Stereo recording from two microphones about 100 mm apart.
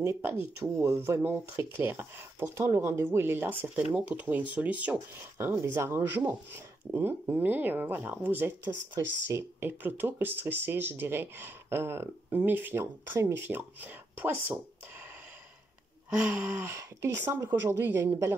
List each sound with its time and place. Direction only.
0.0 s speech: 25° right (ahead or behind)
5.5 s speech: 25° right (ahead or behind)
16.1 s a sound: 15° right (ahead or behind)
16.7 s speech: 35° right (ahead or behind)